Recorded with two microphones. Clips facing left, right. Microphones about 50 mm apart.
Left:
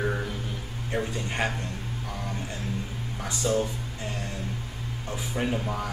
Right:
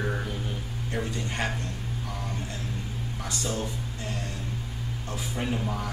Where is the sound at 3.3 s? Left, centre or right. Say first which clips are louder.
Left 7 dB; centre.